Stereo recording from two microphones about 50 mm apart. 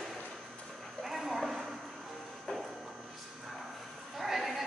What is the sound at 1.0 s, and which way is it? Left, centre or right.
Clip-clop, centre.